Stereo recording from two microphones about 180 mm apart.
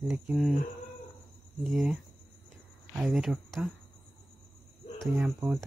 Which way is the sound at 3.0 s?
Centre (ahead or behind).